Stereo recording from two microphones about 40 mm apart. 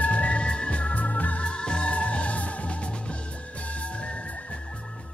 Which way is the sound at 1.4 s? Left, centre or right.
Left.